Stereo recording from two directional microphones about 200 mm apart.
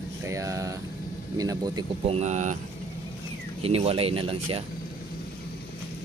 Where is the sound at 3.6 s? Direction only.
30° right (ahead or behind).